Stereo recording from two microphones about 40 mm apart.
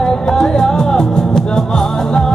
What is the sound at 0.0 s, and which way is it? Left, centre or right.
Music, centre.